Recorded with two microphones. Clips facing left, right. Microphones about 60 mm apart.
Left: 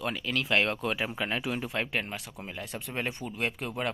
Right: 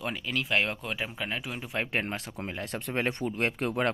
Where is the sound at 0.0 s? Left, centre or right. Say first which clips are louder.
Left 1 dB; centre.